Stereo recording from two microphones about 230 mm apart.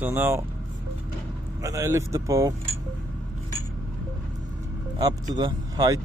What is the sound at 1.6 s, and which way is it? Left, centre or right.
Speech, centre.